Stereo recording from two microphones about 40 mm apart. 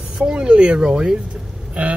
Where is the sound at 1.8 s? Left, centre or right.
Right.